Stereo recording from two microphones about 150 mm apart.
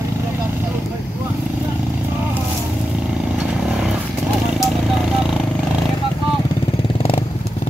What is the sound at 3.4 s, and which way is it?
Vehicle, 5° right (ahead or behind).